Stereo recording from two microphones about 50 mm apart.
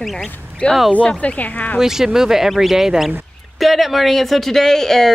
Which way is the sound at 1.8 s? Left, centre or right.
Centre.